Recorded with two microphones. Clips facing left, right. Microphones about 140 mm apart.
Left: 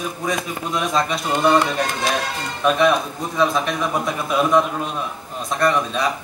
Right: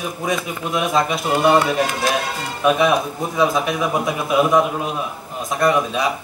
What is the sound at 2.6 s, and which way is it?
Speech, 5° right (ahead or behind).